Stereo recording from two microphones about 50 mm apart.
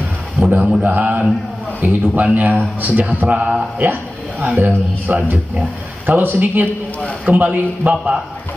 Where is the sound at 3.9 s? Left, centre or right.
Right.